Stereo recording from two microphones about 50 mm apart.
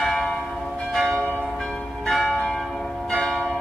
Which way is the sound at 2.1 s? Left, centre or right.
Centre.